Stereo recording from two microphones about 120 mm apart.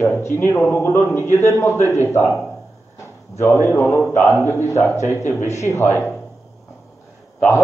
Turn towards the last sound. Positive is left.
turn(degrees=15)  # may be behind; listen again after turning